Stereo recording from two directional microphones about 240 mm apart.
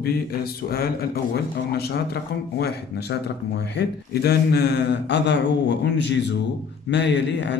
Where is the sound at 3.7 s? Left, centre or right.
Left.